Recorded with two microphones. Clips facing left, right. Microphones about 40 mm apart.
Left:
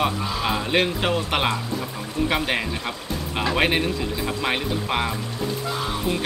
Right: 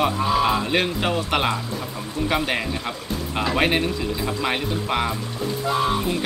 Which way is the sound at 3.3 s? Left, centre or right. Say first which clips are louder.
Even; centre.